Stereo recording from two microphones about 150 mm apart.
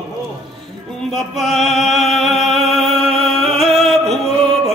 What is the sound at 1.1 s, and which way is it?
Music, centre (ahead or behind).